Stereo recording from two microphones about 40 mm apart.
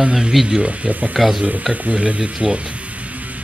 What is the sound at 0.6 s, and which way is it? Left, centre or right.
Speech, right.